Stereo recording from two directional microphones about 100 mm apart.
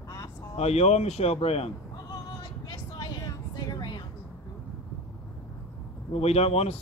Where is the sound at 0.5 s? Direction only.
90° left.